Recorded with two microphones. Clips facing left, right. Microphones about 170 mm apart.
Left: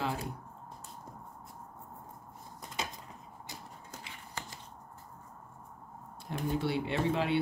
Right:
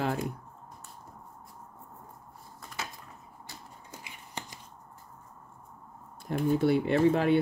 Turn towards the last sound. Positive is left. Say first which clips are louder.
# right 7 dB
turn(degrees=-50)  # may be behind; listen again after turning